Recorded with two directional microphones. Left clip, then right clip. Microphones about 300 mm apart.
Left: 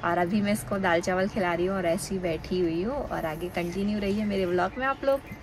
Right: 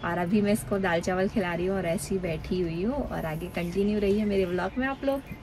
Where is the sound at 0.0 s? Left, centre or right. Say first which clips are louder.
Left 1 dB; centre.